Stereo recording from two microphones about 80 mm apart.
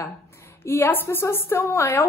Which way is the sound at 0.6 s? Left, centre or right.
Left.